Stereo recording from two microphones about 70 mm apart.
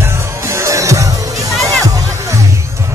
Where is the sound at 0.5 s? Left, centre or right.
Right.